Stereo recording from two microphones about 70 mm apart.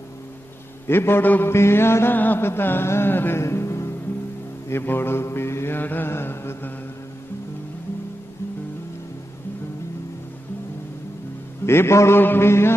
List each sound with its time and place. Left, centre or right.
0.8 s mantra: left
11.6 s mantra: left